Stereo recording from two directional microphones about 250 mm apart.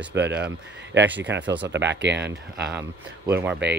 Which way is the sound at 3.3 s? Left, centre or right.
Centre.